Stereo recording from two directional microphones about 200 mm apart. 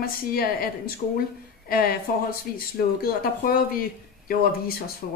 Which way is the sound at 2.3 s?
45° left (ahead or behind).